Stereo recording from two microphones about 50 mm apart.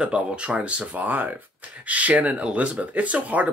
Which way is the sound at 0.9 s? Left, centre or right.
Right.